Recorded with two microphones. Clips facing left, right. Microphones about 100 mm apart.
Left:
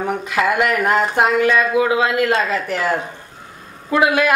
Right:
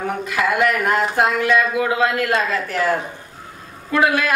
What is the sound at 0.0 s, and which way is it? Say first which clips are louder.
A woman's voice: left 2 dB; 20° left (ahead or behind).